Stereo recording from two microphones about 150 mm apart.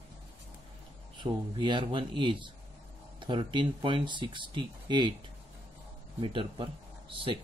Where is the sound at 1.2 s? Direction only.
30° right (ahead or behind).